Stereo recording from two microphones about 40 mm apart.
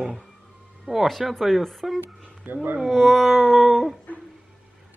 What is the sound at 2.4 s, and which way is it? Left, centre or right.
Speech, right.